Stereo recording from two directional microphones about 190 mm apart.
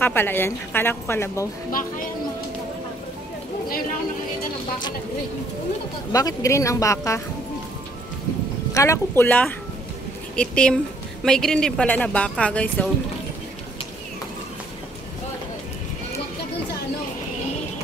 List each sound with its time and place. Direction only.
0.0 s a woman's voice: 10° left (ahead or behind)
6.1 s a woman's voice: 15° left (ahead or behind)
8.7 s a woman's voice: 15° left (ahead or behind)